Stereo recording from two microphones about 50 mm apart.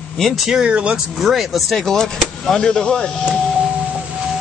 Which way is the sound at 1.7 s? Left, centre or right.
Centre.